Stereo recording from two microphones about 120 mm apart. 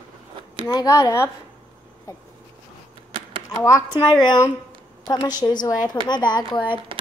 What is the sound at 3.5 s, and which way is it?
Speech, 25° left (ahead or behind).